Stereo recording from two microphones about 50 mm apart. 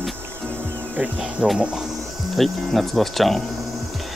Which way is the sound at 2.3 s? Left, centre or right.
Centre.